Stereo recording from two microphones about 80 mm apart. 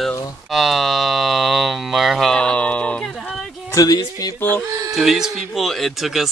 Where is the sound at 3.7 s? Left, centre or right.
Left.